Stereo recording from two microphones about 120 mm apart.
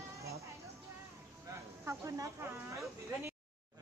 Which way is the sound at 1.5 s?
25° right (ahead or behind).